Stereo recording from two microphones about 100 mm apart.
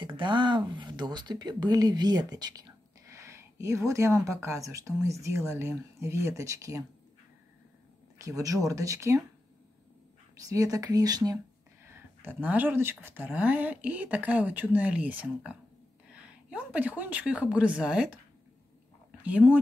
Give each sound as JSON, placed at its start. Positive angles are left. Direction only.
{"t": 0.0, "sound": "speech", "side_deg": -50}
{"t": 3.1, "sound": "speech", "side_deg": -30}
{"t": 8.2, "sound": "speech", "side_deg": -35}
{"t": 10.3, "sound": "speech", "side_deg": -35}
{"t": 11.8, "sound": "a woman's voice", "side_deg": -20}
{"t": 19.2, "sound": "speech", "side_deg": -15}